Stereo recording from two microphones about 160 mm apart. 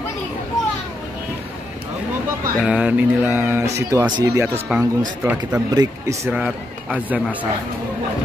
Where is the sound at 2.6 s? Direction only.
5° right (ahead or behind).